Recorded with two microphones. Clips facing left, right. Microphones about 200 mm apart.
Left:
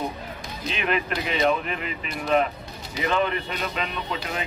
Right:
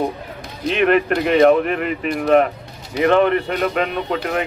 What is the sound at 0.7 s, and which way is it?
Speech, 65° right (ahead or behind).